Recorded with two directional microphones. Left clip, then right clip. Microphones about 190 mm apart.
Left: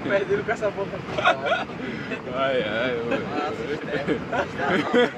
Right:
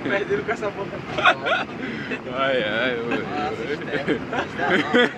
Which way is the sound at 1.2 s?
Centre (ahead or behind).